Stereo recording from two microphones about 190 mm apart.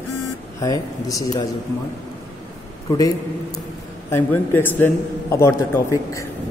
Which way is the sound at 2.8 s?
20° left (ahead or behind).